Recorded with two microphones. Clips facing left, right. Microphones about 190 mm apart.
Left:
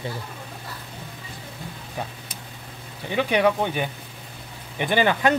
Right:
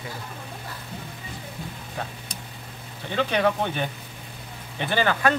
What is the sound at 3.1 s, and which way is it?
Speech, 10° left (ahead or behind).